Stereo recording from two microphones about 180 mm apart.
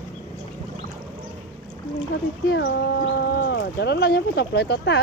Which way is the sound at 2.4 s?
70° left (ahead or behind).